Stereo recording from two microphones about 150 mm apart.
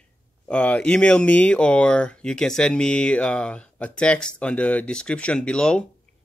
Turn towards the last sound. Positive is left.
turn(degrees=5)  # may be behind; listen again after turning